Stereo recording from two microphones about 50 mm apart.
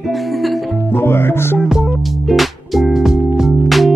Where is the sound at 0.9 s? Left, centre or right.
Left.